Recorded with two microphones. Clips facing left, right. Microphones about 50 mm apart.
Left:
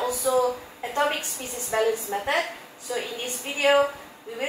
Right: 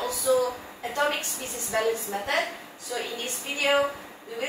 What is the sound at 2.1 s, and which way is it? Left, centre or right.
Speech, left.